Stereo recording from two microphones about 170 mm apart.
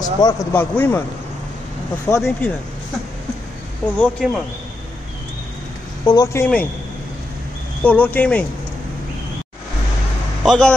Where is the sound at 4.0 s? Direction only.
5° left (ahead or behind).